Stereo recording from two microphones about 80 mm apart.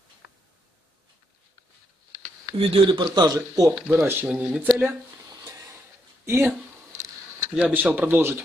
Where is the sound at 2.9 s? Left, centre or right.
Right.